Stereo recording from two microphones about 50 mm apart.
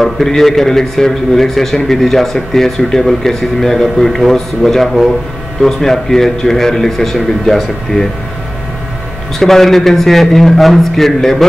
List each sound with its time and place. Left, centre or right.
0.0 s a man's voice: centre
9.4 s speech: centre